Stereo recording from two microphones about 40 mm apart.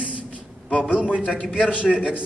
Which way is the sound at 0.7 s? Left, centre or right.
Left.